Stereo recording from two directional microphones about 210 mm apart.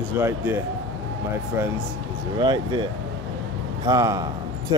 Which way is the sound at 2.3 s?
20° right (ahead or behind).